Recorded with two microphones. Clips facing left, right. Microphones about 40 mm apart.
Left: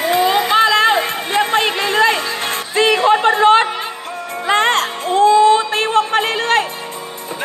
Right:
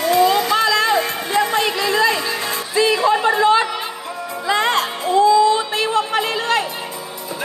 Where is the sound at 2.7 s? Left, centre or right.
Left.